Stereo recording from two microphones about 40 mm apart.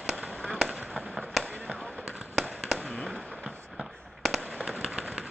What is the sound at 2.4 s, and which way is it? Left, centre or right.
Fireworks, centre.